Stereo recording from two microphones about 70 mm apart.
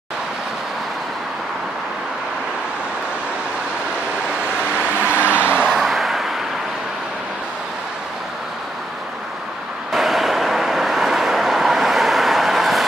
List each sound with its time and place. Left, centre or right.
4.8 s vehicle: left
5.7 s vehicle: centre
9.9 s vehicle: centre